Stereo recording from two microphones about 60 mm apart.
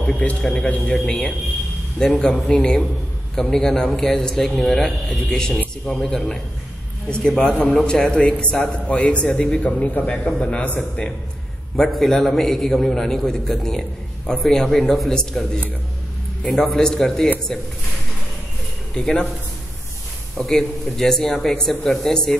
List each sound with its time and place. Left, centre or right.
0.0 s a man's voice: centre
11.7 s a man's voice: centre
18.9 s a man's voice: centre
20.3 s a man's voice: centre